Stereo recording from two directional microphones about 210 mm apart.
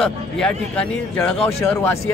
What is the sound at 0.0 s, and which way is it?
Speech, 5° left (ahead or behind).